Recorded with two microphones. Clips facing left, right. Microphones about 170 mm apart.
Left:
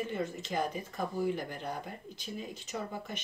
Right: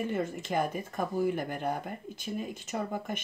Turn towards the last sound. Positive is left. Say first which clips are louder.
# right 5 dB
turn(degrees=-50)  # may be behind; listen again after turning